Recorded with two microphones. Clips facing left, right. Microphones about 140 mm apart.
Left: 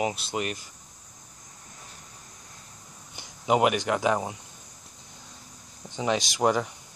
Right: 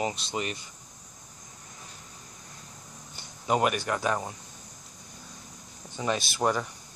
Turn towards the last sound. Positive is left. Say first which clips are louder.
# left 3 dB
turn(degrees=15)  # may be behind; listen again after turning